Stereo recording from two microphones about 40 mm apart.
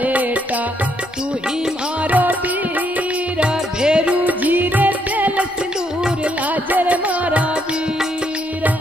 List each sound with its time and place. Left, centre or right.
0.0 s music: right
2.0 s music: right
3.3 s music: right
4.1 s music: right
6.5 s music: right